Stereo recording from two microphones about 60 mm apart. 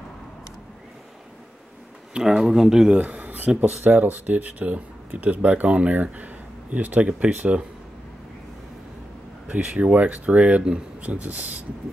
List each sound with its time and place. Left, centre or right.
2.1 s speech: centre
2.9 s speech: right
9.5 s speech: right